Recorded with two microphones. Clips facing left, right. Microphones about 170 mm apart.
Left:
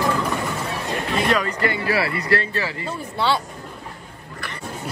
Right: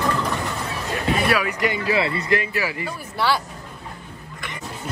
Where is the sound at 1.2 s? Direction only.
10° right (ahead or behind).